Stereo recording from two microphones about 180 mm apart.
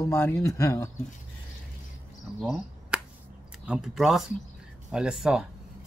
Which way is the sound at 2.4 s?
5° right (ahead or behind).